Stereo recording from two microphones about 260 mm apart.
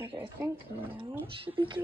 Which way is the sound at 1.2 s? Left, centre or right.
Centre.